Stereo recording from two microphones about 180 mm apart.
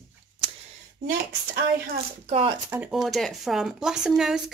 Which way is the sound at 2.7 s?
5° right (ahead or behind).